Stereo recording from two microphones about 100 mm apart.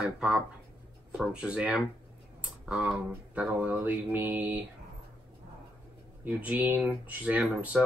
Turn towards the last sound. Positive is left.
turn(degrees=-15)  # may be behind; listen again after turning